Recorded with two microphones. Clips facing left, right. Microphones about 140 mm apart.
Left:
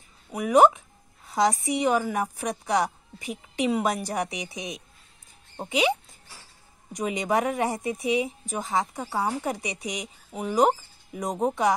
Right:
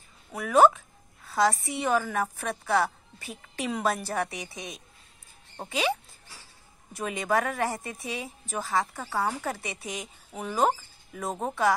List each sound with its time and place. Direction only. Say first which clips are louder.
0.3 s a woman's voice: left 2 dB; 15° left (ahead or behind)